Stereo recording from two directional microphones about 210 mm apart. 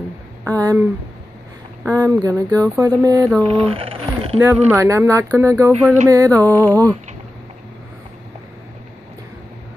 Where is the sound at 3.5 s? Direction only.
25° right (ahead or behind).